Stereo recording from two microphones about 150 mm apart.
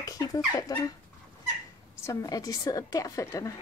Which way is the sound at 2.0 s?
25° left (ahead or behind).